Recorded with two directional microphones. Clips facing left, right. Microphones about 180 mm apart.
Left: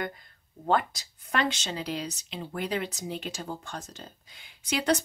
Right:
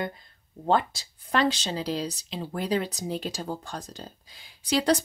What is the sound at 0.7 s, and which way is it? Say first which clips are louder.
Speech: right 2 dB; 30° right (ahead or behind).